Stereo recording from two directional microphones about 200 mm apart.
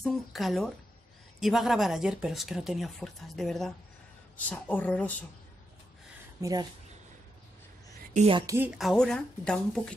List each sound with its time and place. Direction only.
0.0 s a woman's voice: centre (ahead or behind)
6.4 s speech: 15° right (ahead or behind)
8.1 s a woman's voice: 35° right (ahead or behind)
8.4 s speech: 15° right (ahead or behind); by 9.9 s 5° left (ahead or behind)